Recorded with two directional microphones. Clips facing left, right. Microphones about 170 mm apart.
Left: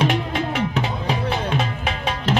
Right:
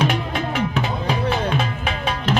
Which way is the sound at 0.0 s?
25° left (ahead or behind).